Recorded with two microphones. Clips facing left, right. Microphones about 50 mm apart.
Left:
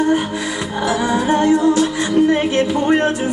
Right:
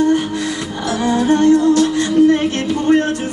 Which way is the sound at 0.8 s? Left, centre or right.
Centre.